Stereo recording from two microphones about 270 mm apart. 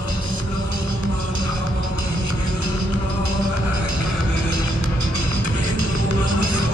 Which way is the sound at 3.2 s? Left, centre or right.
Right.